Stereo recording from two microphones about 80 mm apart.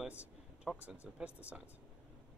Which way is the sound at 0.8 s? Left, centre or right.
Centre.